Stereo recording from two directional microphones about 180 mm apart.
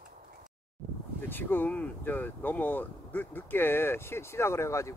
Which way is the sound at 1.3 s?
10° left (ahead or behind).